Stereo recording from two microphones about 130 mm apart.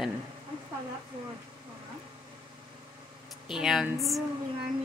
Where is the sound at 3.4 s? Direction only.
5° right (ahead or behind).